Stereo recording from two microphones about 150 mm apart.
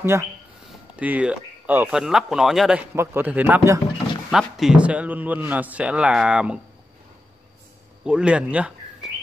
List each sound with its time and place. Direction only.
0.0 s a man's voice: 15° right (ahead or behind); by 2.8 s centre (ahead or behind)
2.9 s a man's voice: 15° right (ahead or behind)
4.3 s a man's voice: 5° right (ahead or behind)
8.0 s speech: 5° right (ahead or behind)